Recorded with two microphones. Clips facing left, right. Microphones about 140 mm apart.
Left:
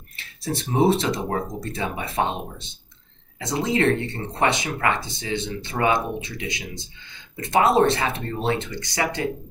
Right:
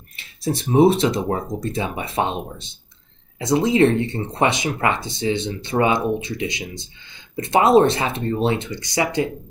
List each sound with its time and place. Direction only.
0.1 s speech: 15° right (ahead or behind)
3.3 s speech: 15° right (ahead or behind)